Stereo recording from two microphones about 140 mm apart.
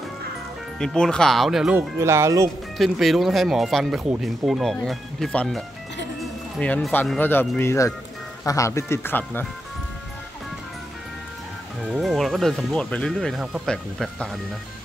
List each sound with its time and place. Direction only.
0.7 s speech: 5° left (ahead or behind)
1.8 s speech: 20° right (ahead or behind)
2.8 s speech: centre (ahead or behind)
6.6 s speech: 10° left (ahead or behind)
11.9 s speech: centre (ahead or behind)